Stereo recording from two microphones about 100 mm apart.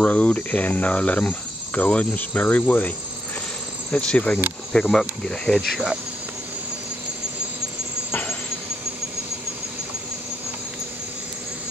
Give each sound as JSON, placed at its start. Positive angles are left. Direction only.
{"t": 0.0, "sound": "speech", "side_deg": 15}
{"t": 3.9, "sound": "speech", "side_deg": 10}
{"t": 5.6, "sound": "speech", "side_deg": -5}
{"t": 8.1, "sound": "a sound", "side_deg": 20}